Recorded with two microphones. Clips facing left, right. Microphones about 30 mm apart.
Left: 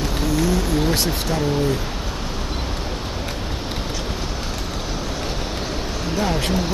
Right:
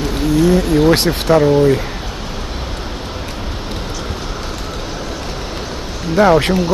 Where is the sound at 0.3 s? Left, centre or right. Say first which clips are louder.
Right 9 dB; right.